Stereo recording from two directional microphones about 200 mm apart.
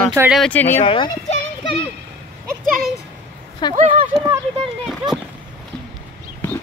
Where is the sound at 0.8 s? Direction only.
25° left (ahead or behind).